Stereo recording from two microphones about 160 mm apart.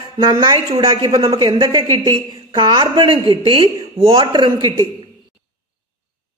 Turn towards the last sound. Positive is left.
turn(degrees=-25)  # may be behind; listen again after turning